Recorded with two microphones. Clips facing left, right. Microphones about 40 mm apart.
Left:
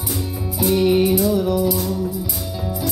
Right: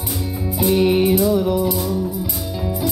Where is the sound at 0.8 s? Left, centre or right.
Right.